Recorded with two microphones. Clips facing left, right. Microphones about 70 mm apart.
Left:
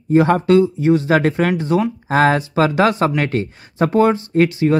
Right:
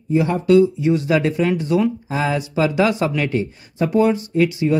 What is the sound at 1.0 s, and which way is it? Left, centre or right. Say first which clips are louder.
Speech: left 2 dB; left.